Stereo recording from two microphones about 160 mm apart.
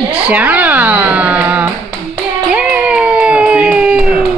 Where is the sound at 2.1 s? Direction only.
10° right (ahead or behind).